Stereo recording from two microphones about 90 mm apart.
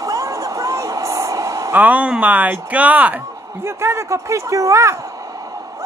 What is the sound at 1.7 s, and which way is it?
Speech, 20° right (ahead or behind).